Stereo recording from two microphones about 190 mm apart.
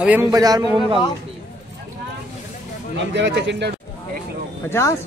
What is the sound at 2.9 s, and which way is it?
Speech, 70° right (ahead or behind).